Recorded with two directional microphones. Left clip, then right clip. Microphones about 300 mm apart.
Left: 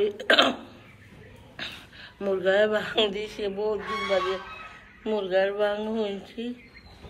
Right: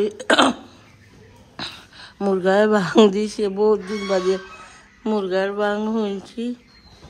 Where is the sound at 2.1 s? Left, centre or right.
Centre.